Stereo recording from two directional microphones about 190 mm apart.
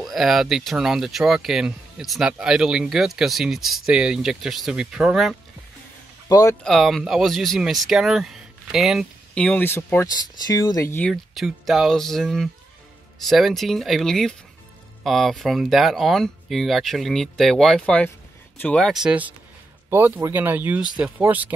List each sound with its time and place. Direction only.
0.0 s speech: centre (ahead or behind)
6.2 s speech: 20° left (ahead or behind)
6.6 s speech: centre (ahead or behind)